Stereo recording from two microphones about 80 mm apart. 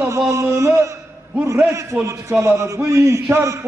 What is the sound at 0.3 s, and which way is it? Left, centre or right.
A man's voice, right.